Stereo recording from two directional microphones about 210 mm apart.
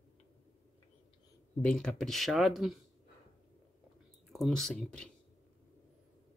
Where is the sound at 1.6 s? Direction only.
5° left (ahead or behind).